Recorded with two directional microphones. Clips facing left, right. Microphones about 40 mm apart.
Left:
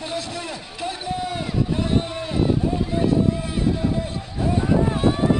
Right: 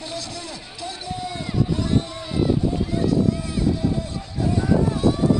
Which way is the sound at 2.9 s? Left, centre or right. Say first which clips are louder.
Left 2 dB; left.